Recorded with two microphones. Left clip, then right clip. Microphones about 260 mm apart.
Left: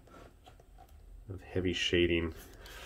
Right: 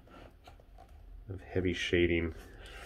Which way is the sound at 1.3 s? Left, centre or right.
Centre.